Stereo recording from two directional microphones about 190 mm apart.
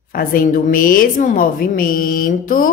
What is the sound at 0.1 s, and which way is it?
A woman's voice, 45° left (ahead or behind).